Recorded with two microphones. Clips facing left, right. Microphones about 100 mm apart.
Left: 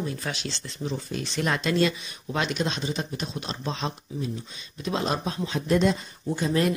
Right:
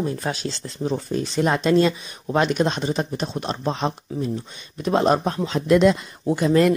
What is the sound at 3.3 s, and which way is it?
Speech, 55° right (ahead or behind).